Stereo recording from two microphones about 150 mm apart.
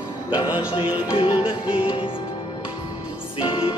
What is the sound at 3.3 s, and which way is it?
Music, 35° left (ahead or behind).